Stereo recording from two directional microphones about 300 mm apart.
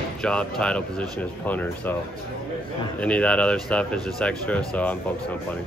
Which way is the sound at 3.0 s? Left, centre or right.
Centre.